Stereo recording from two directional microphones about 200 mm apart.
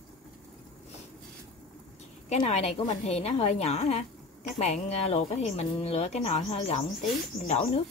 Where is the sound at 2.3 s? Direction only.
35° left (ahead or behind).